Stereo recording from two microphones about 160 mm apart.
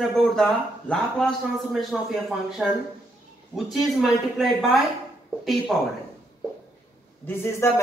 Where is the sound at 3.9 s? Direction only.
Centre (ahead or behind).